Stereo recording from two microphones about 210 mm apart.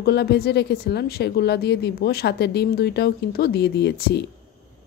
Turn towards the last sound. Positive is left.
turn(degrees=50)  # may be behind; listen again after turning